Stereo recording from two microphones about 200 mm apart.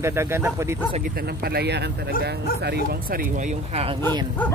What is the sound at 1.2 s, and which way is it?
Speech, 50° right (ahead or behind).